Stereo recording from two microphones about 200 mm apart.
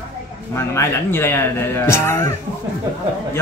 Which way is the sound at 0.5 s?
15° left (ahead or behind).